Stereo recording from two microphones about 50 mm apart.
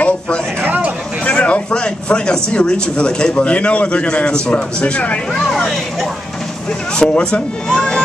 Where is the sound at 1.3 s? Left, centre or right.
Left.